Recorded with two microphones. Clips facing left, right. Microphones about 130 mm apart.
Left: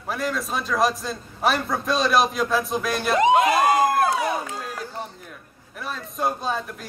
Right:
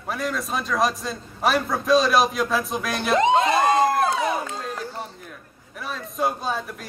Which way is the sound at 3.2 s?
25° right (ahead or behind).